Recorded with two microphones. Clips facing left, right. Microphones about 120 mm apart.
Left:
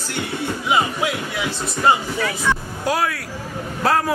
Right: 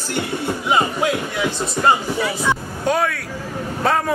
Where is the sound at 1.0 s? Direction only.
5° left (ahead or behind).